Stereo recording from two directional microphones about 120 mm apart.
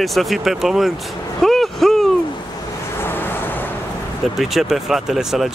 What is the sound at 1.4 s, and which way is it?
Vehicle, centre (ahead or behind).